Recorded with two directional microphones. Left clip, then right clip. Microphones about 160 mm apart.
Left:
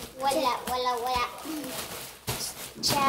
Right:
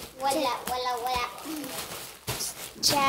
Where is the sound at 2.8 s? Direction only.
55° right (ahead or behind).